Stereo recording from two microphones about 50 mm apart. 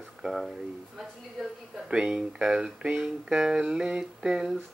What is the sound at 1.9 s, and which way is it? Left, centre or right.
Speech, centre.